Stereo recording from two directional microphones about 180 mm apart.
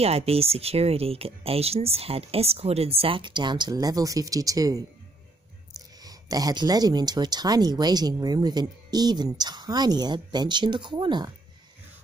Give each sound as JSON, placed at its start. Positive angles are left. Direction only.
{"t": 0.0, "sound": "speech", "side_deg": -35}
{"t": 5.9, "sound": "speech", "side_deg": -20}